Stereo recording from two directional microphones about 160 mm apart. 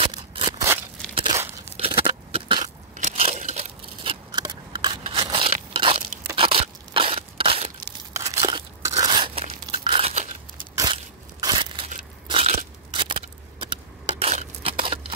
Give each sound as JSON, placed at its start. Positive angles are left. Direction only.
{"t": 0.0, "sound": "scissors", "side_deg": -35}
{"t": 1.1, "sound": "crumpling", "side_deg": -25}
{"t": 1.8, "sound": "a sound", "side_deg": -35}
{"t": 2.9, "sound": "a sound", "side_deg": -45}
{"t": 5.0, "sound": "crushing", "side_deg": -35}
{"t": 6.3, "sound": "crunch", "side_deg": -35}
{"t": 8.2, "sound": "biting", "side_deg": -25}
{"t": 11.4, "sound": "crushing", "side_deg": -30}
{"t": 12.3, "sound": "biting", "side_deg": -40}
{"t": 14.2, "sound": "a sound", "side_deg": -40}